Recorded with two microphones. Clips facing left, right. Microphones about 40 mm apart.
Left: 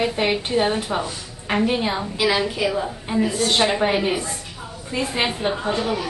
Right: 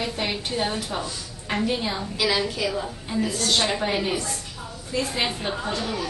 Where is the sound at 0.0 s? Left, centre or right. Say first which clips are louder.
Left 6 dB; left.